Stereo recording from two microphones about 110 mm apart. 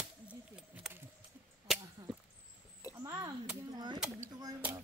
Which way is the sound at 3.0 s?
30° right (ahead or behind).